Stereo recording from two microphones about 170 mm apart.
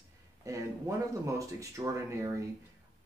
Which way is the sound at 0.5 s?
20° right (ahead or behind).